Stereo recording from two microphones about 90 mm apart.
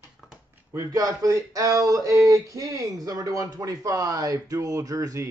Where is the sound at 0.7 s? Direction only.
40° right (ahead or behind).